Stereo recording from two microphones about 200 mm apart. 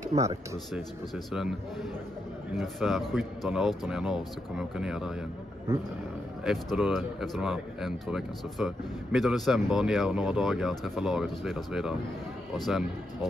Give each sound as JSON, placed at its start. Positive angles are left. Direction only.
{"t": 0.1, "sound": "speech", "side_deg": -35}
{"t": 0.7, "sound": "speech", "side_deg": 0}
{"t": 2.5, "sound": "speech", "side_deg": 0}
{"t": 6.4, "sound": "speech", "side_deg": 0}